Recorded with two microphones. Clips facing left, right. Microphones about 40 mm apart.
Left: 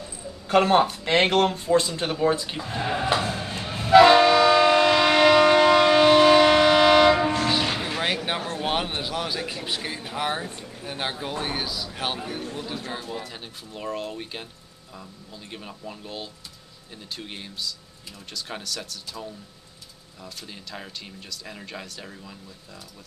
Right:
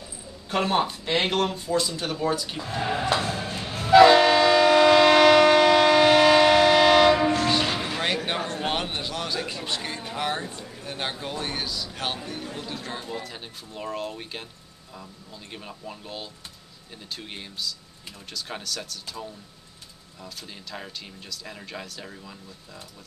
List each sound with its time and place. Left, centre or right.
0.7 s speech: left; by 4.4 s centre
4.4 s train: centre
5.2 s civil defense siren: centre
8.6 s a sound: centre
10.8 s a man's voice: centre
15.5 s speech: centre
20.2 s speech: centre